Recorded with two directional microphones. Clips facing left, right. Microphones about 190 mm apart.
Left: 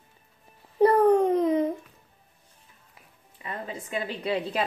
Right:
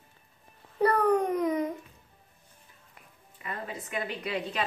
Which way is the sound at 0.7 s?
25° left (ahead or behind).